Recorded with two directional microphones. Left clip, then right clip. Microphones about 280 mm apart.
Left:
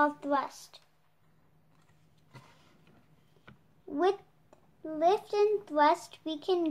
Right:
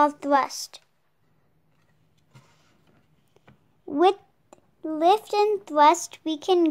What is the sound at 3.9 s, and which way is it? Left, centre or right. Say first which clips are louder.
A child's voice: right 9 dB; right.